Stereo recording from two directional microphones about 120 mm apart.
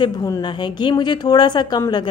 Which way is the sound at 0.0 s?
35° left (ahead or behind).